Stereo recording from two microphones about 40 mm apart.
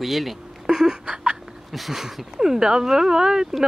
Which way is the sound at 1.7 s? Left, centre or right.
Centre.